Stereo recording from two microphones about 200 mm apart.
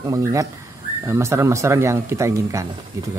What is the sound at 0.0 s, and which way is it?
Speech, 15° right (ahead or behind).